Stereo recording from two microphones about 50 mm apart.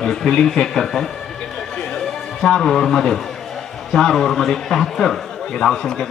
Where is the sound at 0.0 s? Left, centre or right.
Centre.